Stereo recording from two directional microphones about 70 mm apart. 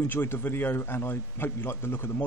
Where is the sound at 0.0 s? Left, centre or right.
Left.